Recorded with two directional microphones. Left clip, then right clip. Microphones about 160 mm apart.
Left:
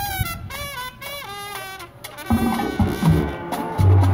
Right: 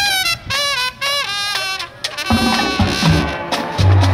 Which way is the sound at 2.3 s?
15° right (ahead or behind).